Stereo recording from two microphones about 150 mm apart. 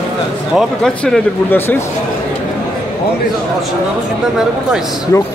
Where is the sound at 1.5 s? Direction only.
15° left (ahead or behind).